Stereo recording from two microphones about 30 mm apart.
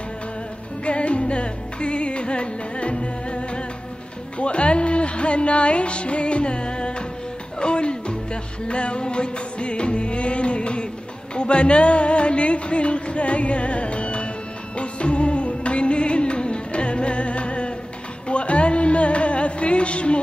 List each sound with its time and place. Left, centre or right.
0.8 s music: left